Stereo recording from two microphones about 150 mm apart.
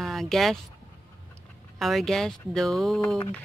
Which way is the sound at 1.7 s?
Centre (ahead or behind).